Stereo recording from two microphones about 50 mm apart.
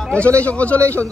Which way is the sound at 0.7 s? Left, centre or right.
Right.